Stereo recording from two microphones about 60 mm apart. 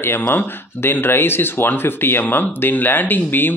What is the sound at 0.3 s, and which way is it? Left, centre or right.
Speech, left.